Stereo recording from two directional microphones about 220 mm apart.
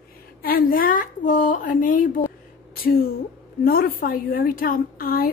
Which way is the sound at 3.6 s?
45° left (ahead or behind).